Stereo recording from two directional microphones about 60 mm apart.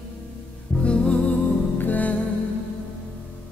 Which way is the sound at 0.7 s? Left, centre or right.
Centre.